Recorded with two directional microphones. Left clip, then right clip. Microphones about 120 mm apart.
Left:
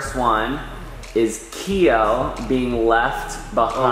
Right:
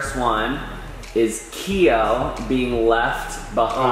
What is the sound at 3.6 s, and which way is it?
Speech, 35° left (ahead or behind).